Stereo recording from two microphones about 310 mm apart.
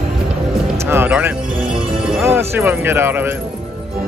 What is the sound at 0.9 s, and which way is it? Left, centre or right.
Music, centre.